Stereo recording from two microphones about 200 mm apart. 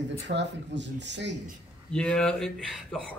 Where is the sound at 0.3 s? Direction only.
60° right (ahead or behind).